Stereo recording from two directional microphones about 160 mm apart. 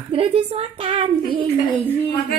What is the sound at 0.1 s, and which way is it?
A woman's voice, 35° right (ahead or behind).